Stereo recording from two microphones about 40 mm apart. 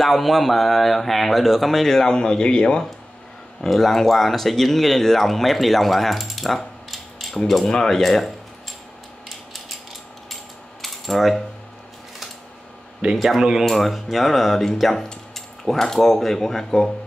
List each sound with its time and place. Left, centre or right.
0.0 s speech: centre; by 2.8 s left
3.6 s speech: centre
7.6 s speech: centre
10.3 s mechanisms: centre
13.1 s speech: centre
13.4 s speech: centre
13.7 s speech: centre